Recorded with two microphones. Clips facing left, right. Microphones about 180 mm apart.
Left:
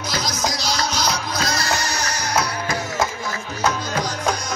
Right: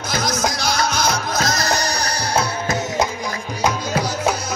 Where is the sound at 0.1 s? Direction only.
55° right (ahead or behind); by 3.1 s 25° right (ahead or behind).